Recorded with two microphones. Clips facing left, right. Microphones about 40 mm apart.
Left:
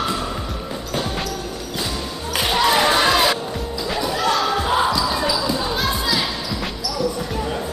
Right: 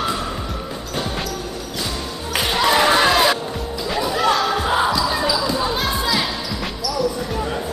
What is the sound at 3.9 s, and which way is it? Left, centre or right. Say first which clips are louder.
Basketball bounce: right 2 dB; centre.